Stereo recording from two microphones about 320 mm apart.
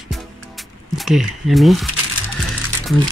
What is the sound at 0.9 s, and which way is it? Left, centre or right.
Speech, centre.